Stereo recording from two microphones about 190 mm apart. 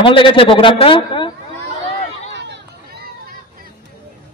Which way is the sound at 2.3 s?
65° right (ahead or behind).